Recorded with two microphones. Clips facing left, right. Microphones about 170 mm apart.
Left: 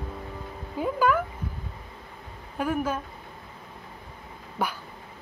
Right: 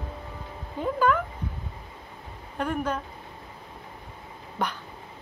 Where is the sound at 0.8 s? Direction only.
5° left (ahead or behind).